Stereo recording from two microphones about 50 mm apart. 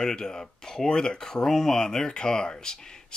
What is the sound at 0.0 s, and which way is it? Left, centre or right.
Speech, centre.